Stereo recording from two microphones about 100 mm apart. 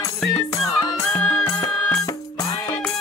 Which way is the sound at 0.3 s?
30° left (ahead or behind).